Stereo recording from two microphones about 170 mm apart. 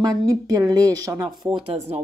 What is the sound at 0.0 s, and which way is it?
A woman's voice, 20° right (ahead or behind).